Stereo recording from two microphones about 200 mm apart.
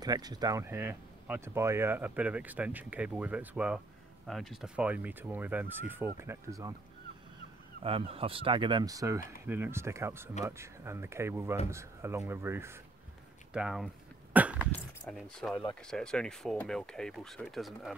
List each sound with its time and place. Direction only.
0.0 s speech: 20° right (ahead or behind)
7.8 s speech: 30° right (ahead or behind); by 13.8 s 5° right (ahead or behind)
14.3 s cough: 5° right (ahead or behind)
15.0 s speech: centre (ahead or behind)